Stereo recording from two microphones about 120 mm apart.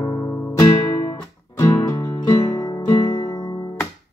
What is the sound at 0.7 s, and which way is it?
Music, 40° left (ahead or behind).